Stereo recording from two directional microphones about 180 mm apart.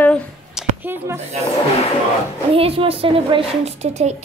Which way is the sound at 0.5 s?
10° right (ahead or behind).